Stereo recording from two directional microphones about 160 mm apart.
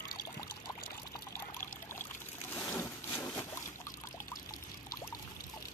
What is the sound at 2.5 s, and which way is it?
Boat, 10° left (ahead or behind).